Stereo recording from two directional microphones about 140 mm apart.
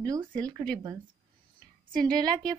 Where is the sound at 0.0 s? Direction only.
30° right (ahead or behind).